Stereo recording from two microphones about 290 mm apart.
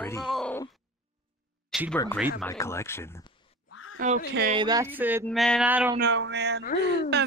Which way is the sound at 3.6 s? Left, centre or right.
Left.